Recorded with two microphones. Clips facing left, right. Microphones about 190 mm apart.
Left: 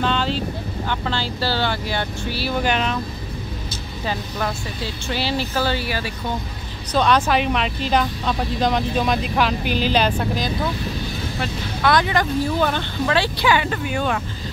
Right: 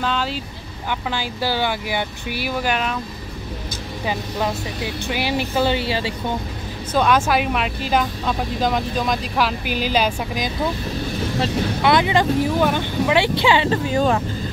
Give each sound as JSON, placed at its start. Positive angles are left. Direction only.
{"t": 0.0, "sound": "vehicle", "side_deg": -5}
{"t": 0.8, "sound": "speech", "side_deg": -10}
{"t": 2.6, "sound": "speech", "side_deg": -5}
{"t": 4.0, "sound": "speech", "side_deg": -15}
{"t": 6.9, "sound": "speech", "side_deg": -5}
{"t": 11.8, "sound": "speech", "side_deg": -20}
{"t": 12.5, "sound": "speech", "side_deg": -10}